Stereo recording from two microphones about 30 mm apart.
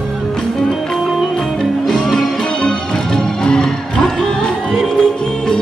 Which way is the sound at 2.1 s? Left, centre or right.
Centre.